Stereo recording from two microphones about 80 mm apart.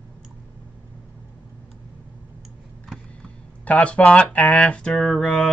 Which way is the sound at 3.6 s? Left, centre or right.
Centre.